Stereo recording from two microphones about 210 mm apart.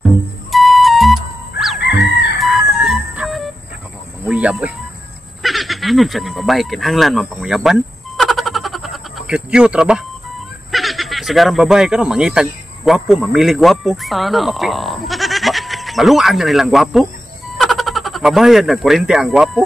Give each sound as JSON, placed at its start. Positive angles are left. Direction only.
{"t": 0.5, "sound": "music", "side_deg": 0}
{"t": 1.8, "sound": "chicken", "side_deg": 55}
{"t": 2.3, "sound": "music", "side_deg": 0}
{"t": 4.3, "sound": "speech", "side_deg": -5}
{"t": 5.4, "sound": "a sound", "side_deg": 0}
{"t": 10.7, "sound": "speech", "side_deg": 0}